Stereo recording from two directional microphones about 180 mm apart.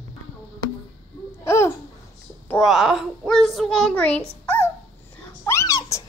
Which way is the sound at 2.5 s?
Centre (ahead or behind).